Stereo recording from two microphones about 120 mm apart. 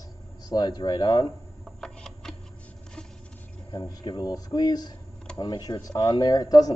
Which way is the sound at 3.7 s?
35° left (ahead or behind).